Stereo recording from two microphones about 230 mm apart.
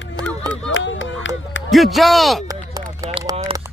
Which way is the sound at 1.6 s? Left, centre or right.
Centre.